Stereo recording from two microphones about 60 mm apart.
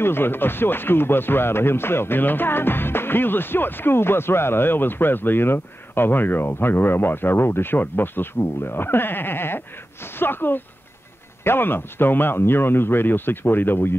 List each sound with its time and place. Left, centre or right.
0.0 s speech: left